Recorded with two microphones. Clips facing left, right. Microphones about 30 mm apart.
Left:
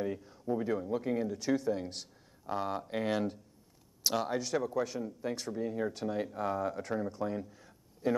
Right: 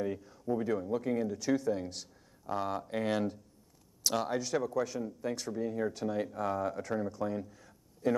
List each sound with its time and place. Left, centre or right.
0.0 s speech: centre
4.6 s speech: centre
7.3 s a sound: centre